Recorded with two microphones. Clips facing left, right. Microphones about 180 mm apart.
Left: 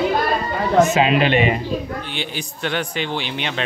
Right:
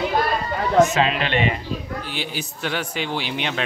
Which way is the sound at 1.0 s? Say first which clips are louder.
Left 5 dB; 10° left (ahead or behind).